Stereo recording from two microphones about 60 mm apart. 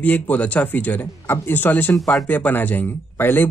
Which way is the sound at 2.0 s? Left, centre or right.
Centre.